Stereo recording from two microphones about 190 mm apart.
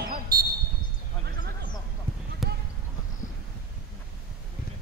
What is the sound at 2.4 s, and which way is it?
Basketball bounce, centre (ahead or behind).